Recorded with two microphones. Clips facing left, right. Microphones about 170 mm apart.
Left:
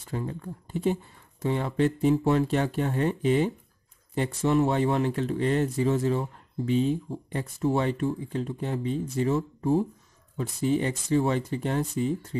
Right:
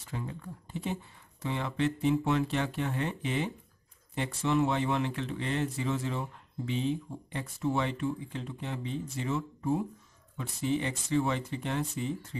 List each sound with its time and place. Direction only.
0.1 s speech: 40° left (ahead or behind)